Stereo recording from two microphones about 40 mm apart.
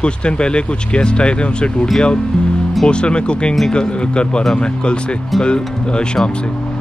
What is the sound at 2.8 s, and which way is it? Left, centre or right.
Speech, left.